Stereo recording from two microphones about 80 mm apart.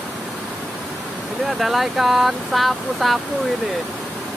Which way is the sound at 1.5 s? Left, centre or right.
Centre.